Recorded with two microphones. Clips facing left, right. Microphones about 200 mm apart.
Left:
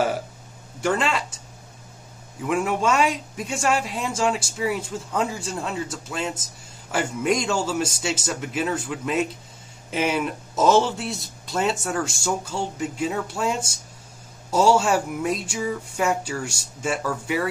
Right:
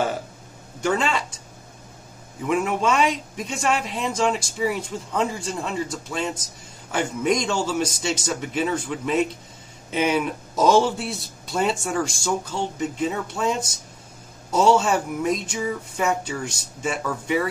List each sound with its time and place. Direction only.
0.7 s speech: 5° left (ahead or behind)
2.4 s a man's voice: centre (ahead or behind)